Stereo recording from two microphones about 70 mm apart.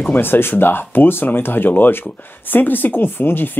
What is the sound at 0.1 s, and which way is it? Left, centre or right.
Speech, left.